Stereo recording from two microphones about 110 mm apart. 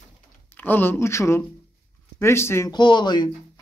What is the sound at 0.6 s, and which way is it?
Speech, 15° left (ahead or behind).